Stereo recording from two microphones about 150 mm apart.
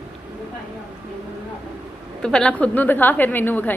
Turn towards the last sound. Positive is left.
turn(degrees=15)  # may be behind; listen again after turning